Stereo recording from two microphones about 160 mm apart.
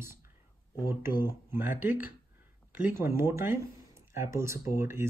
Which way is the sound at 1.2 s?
15° right (ahead or behind).